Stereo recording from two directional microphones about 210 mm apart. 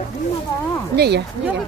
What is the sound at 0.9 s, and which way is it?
Speech, 50° right (ahead or behind).